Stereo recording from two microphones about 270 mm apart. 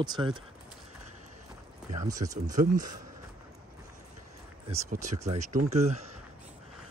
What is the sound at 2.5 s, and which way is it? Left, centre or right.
Speech, right.